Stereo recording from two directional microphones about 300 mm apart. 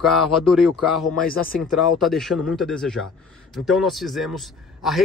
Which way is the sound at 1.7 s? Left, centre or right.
Centre.